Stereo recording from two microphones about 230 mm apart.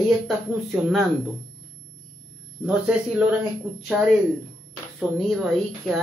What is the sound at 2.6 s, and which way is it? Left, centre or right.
Speech, centre.